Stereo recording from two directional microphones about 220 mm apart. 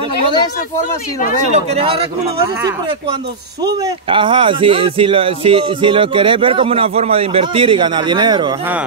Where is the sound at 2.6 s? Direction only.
15° right (ahead or behind).